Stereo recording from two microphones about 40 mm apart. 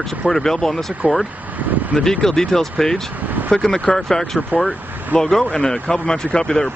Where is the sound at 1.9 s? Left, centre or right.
Centre.